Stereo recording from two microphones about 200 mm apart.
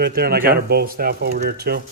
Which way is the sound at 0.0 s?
50° right (ahead or behind).